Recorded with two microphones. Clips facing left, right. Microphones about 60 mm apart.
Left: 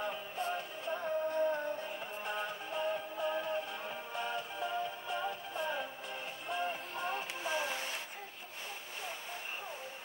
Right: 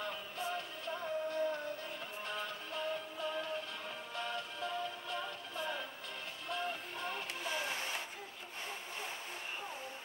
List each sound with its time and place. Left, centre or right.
0.5 s music: centre